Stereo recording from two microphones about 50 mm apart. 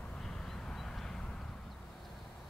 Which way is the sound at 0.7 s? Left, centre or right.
Centre.